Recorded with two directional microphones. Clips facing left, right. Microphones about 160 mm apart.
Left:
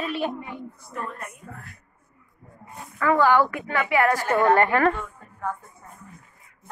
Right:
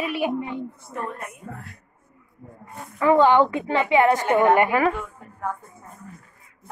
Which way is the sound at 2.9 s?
20° right (ahead or behind).